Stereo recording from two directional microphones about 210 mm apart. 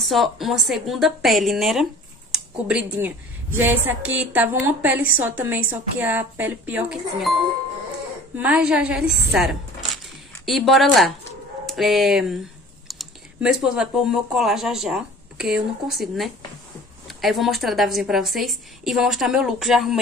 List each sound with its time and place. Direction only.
0.0 s a woman's voice: centre (ahead or behind)
8.4 s a woman's voice: 5° right (ahead or behind)